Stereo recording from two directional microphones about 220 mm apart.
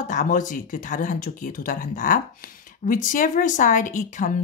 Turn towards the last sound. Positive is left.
turn(degrees=35)  # may be behind; listen again after turning